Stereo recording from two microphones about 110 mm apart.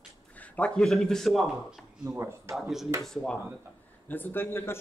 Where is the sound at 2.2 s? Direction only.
25° right (ahead or behind).